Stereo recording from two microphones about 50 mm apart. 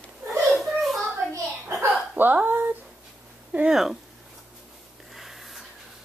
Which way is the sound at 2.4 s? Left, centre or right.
Right.